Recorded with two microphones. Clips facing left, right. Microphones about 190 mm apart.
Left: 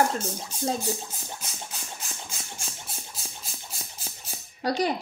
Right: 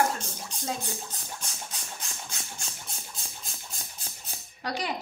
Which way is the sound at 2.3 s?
5° left (ahead or behind).